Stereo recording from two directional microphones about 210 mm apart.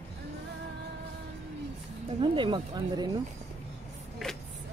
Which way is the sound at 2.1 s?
25° right (ahead or behind).